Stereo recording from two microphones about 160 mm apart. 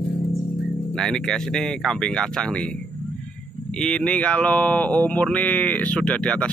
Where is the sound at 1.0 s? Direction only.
5° left (ahead or behind).